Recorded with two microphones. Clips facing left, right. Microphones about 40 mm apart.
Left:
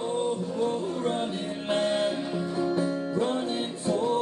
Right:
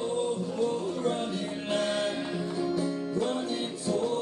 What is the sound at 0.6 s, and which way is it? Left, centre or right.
Music, left.